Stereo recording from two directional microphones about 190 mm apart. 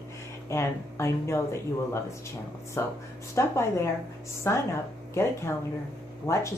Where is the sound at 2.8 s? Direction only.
15° left (ahead or behind).